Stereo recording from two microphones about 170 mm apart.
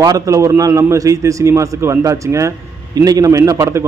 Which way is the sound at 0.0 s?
20° right (ahead or behind).